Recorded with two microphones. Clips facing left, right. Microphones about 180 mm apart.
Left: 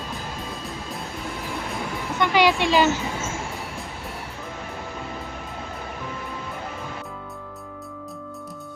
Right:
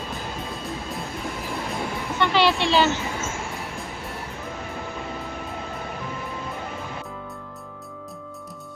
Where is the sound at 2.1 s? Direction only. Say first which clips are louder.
Left 1 dB; 10° left (ahead or behind).